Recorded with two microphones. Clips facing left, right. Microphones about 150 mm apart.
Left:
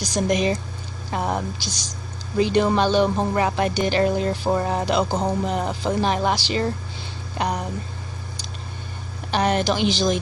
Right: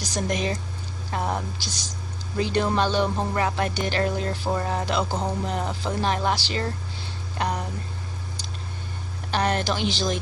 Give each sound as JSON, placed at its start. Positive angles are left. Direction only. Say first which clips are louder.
{"t": 0.0, "sound": "speech", "louder": "left 5 dB", "side_deg": 15}
{"t": 1.6, "sound": "speech", "louder": "left 3 dB", "side_deg": 90}
{"t": 2.5, "sound": "speech", "louder": "left 4 dB", "side_deg": 15}
{"t": 7.3, "sound": "a sound", "louder": "left 2 dB", "side_deg": 15}
{"t": 9.3, "sound": "speech", "louder": "left 4 dB", "side_deg": 10}
{"t": 9.8, "sound": "speech", "louder": "left 5 dB", "side_deg": 90}